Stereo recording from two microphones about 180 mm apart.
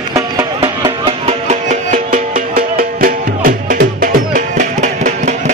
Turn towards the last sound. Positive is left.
turn(degrees=-40)  # may be behind; listen again after turning